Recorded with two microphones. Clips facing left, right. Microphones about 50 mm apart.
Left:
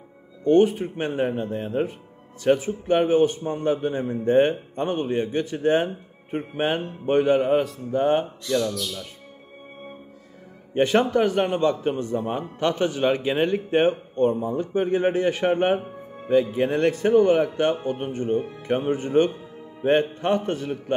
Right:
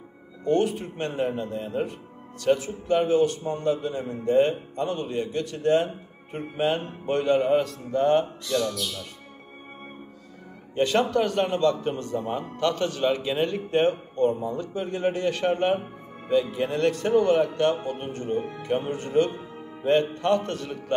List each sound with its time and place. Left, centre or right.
0.5 s a man's voice: left
10.7 s a man's voice: left